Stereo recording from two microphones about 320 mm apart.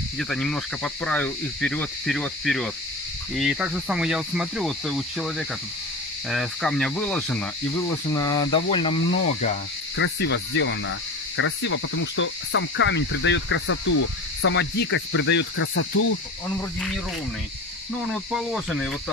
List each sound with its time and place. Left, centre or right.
0.2 s speech: centre
6.3 s speech: centre
9.9 s speech: left
18.1 s speech: centre